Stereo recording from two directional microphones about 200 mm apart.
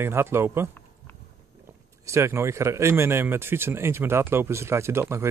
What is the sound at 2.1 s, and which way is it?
Speech, 15° right (ahead or behind).